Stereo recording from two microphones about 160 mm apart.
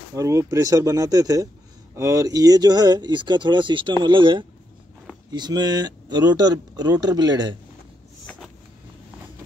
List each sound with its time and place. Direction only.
0.1 s speech: 20° right (ahead or behind)